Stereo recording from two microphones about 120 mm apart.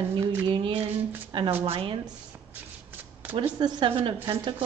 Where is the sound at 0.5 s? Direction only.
40° right (ahead or behind).